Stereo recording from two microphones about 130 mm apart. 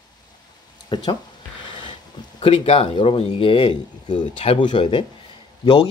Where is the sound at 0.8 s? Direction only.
35° left (ahead or behind).